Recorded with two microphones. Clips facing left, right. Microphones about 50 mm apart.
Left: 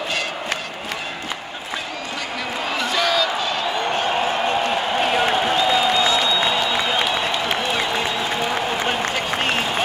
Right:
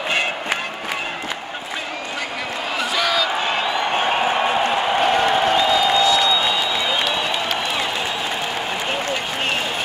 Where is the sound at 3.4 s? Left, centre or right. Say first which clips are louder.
Right 1 dB; right.